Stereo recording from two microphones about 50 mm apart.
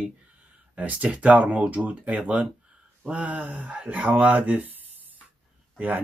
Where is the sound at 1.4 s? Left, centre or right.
Right.